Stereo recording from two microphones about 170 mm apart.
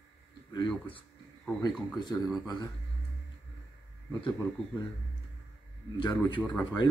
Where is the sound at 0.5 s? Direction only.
25° left (ahead or behind).